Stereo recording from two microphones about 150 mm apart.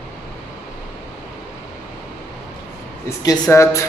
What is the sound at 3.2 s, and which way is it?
Speech, 20° left (ahead or behind).